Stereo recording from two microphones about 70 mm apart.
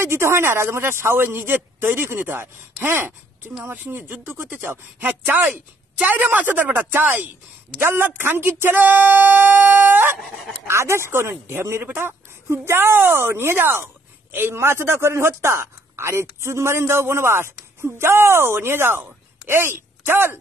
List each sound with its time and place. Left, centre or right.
0.0 s a man's voice: right
10.1 s dog: centre
10.7 s a man's voice: right